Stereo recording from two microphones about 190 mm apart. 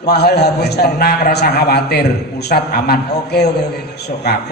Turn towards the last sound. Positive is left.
turn(degrees=60)  # may be behind; listen again after turning